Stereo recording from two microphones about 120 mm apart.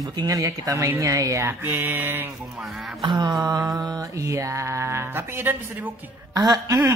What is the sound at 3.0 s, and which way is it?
Mantra, 35° right (ahead or behind).